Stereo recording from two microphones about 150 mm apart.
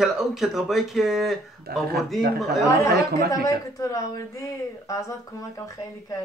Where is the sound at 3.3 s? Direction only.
20° left (ahead or behind).